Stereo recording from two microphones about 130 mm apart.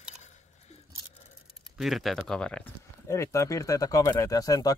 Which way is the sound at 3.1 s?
25° left (ahead or behind).